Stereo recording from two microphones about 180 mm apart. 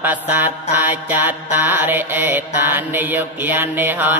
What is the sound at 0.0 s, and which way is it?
Mantra, 10° right (ahead or behind).